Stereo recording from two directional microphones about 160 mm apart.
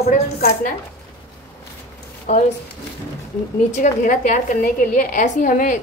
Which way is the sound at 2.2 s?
50° left (ahead or behind).